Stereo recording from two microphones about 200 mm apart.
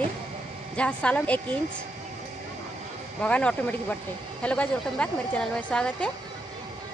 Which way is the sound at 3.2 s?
5° left (ahead or behind).